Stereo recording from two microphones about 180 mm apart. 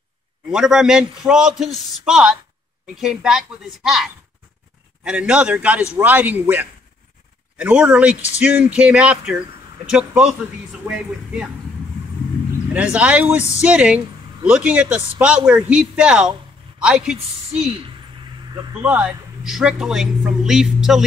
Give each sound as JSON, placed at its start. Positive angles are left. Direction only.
{"t": 0.5, "sound": "a man's voice", "side_deg": -5}
{"t": 12.7, "sound": "a man's voice", "side_deg": -5}
{"t": 18.5, "sound": "speech", "side_deg": -20}
{"t": 18.8, "sound": "a man's voice", "side_deg": -10}